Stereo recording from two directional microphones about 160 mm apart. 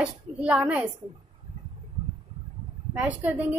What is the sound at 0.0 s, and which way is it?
Speech, 5° right (ahead or behind).